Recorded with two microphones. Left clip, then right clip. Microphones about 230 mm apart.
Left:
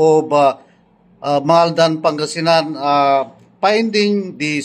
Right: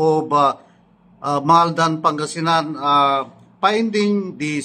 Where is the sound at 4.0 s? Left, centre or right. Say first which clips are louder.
Left 4 dB; centre.